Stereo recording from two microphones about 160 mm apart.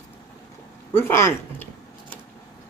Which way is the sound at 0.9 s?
15° left (ahead or behind).